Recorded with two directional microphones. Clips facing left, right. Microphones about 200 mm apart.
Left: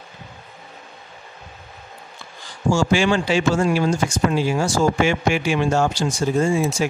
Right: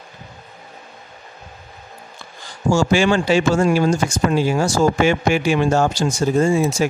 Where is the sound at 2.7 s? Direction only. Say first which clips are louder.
Right 2 dB; 40° right (ahead or behind).